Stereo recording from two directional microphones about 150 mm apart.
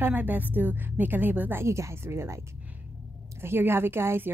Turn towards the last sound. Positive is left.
turn(degrees=-15)  # may be behind; listen again after turning